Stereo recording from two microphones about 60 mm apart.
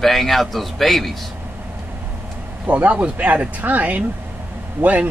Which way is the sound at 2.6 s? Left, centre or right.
Right.